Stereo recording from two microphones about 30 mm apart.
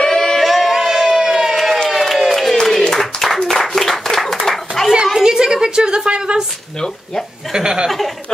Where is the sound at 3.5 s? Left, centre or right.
Centre.